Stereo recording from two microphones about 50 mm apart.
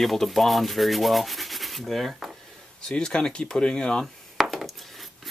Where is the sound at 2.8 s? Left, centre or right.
Centre.